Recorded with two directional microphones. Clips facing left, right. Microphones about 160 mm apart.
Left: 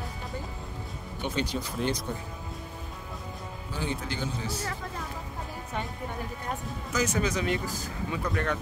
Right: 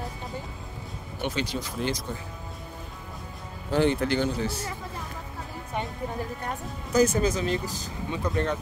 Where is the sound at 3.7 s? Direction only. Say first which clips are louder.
Right 11 dB; 70° right (ahead or behind).